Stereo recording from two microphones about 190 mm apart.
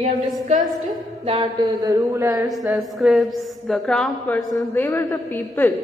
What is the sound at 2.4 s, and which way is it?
A woman's voice, centre (ahead or behind).